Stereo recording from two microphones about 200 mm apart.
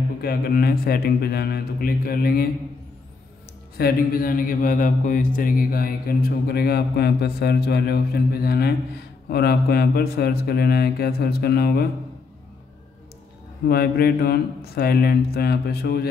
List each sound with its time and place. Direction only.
0.2 s a man's voice: 50° left (ahead or behind)
3.7 s a man's voice: 50° left (ahead or behind)
13.7 s a man's voice: 50° left (ahead or behind)